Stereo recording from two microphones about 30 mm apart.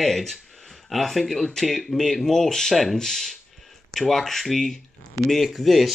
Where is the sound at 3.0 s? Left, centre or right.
Centre.